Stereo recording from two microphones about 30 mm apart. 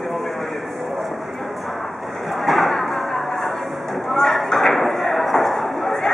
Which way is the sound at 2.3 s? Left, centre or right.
Centre.